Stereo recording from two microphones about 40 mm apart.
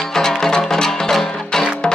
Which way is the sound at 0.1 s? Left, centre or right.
Centre.